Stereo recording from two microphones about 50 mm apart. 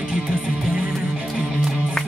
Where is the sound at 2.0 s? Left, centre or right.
Centre.